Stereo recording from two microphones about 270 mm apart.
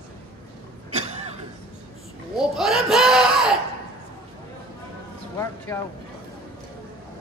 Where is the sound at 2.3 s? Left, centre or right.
Centre.